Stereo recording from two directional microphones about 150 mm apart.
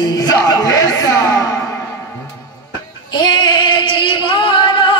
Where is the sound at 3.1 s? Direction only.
30° left (ahead or behind).